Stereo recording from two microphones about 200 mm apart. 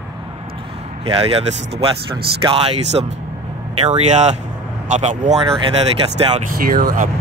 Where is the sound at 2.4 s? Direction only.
30° right (ahead or behind).